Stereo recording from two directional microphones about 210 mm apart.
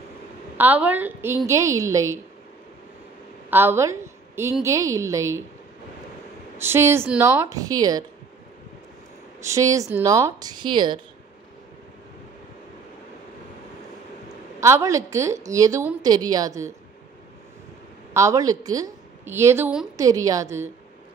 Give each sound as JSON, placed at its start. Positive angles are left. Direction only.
{"t": 0.6, "sound": "a woman's voice", "side_deg": -10}
{"t": 3.4, "sound": "a woman's voice", "side_deg": -10}
{"t": 6.6, "sound": "a woman's voice", "side_deg": -10}
{"t": 9.4, "sound": "a woman's voice", "side_deg": -15}
{"t": 14.6, "sound": "a woman's voice", "side_deg": -15}
{"t": 18.1, "sound": "a woman's voice", "side_deg": -15}